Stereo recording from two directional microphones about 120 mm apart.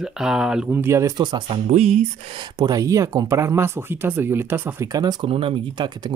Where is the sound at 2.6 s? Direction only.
30° right (ahead or behind).